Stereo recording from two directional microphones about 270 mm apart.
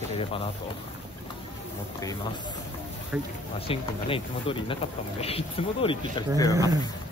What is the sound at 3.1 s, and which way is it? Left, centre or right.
Speech, centre.